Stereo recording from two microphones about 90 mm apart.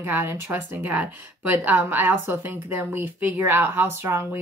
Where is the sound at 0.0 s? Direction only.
25° right (ahead or behind).